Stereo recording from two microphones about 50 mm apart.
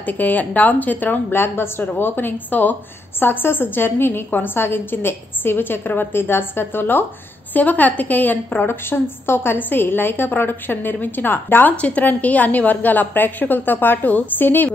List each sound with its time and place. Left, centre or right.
0.0 s a woman's voice: left
1.3 s a woman's voice: left
7.5 s a woman's voice: left
8.6 s a woman's voice: left